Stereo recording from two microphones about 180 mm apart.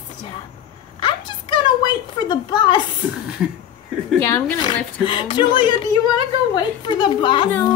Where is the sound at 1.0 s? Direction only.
25° left (ahead or behind).